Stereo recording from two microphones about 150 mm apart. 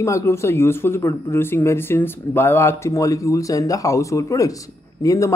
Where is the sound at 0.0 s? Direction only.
20° left (ahead or behind).